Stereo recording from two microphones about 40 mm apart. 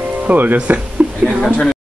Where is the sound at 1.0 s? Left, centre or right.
Right.